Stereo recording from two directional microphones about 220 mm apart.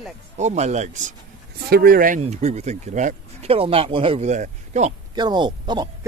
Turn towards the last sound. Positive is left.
turn(degrees=-20)  # may be behind; listen again after turning